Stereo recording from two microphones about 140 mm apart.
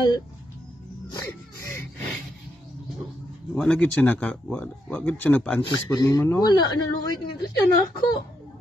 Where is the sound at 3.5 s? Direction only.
5° left (ahead or behind).